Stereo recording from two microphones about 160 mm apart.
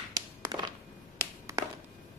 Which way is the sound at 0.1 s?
25° right (ahead or behind).